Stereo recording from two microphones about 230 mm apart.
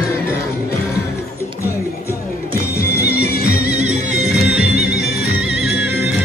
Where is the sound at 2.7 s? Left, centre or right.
Left.